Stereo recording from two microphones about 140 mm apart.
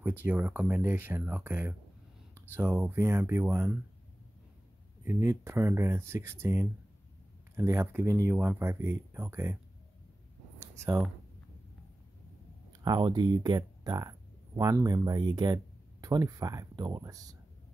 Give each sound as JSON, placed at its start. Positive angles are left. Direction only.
{"t": 0.2, "sound": "speech", "side_deg": -15}
{"t": 5.0, "sound": "speech", "side_deg": -20}
{"t": 12.8, "sound": "speech", "side_deg": -30}